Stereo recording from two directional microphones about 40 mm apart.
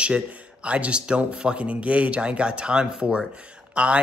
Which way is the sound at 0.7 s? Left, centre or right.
Right.